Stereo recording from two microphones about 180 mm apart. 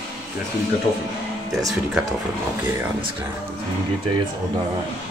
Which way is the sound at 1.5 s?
20° right (ahead or behind).